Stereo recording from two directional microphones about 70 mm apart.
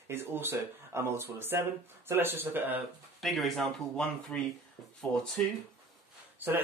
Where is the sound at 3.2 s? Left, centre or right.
Centre.